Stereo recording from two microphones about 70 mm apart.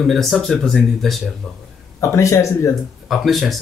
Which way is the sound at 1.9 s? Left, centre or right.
Left.